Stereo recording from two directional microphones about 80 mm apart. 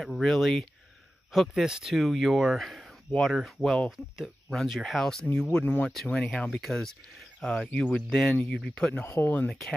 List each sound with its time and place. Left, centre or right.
0.0 s speech: centre
1.5 s speech: centre
9.0 s speech: left
9.5 s speech: centre